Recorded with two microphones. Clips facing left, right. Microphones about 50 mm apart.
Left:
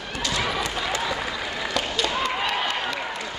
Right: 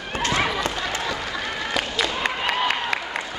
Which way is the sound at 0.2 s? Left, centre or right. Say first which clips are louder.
Right 4 dB; right.